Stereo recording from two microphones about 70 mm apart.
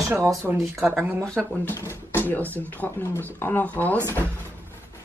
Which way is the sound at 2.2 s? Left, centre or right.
Left.